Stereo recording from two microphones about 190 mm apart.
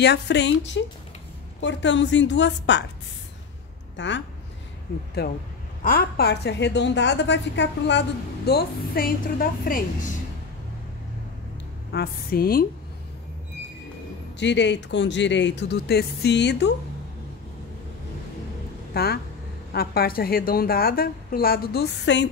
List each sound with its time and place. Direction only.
0.0 s a woman's voice: 65° left (ahead or behind)
3.9 s a woman's voice: 70° left (ahead or behind)
5.2 s a woman's voice: 55° left (ahead or behind)
8.5 s a woman's voice: 50° left (ahead or behind)
11.9 s a woman's voice: 55° left (ahead or behind)
14.4 s speech: 65° left (ahead or behind)
18.9 s a woman's voice: 55° left (ahead or behind)